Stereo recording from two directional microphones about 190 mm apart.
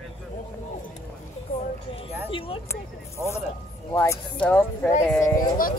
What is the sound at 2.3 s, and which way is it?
Speech, 30° left (ahead or behind).